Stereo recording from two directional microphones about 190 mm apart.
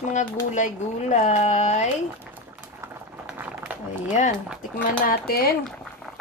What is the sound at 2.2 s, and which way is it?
Boiling, 5° right (ahead or behind).